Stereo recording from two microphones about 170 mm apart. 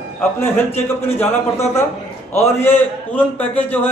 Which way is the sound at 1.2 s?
15° left (ahead or behind).